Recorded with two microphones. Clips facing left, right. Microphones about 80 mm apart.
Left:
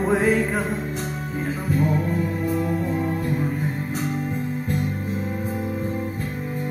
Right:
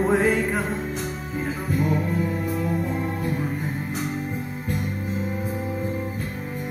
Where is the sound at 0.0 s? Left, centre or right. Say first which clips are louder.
Right 1 dB; centre.